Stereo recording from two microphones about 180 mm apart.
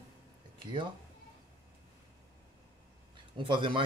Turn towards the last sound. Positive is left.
turn(degrees=-30)  # may be behind; listen again after turning